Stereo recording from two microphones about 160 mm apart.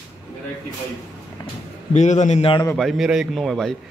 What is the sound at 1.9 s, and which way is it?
Speech, 50° left (ahead or behind).